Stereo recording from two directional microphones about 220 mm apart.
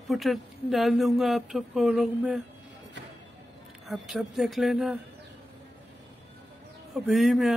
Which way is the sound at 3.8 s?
Centre (ahead or behind).